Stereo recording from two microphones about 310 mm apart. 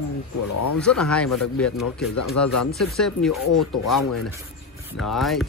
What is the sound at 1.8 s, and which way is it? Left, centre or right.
Speech, left.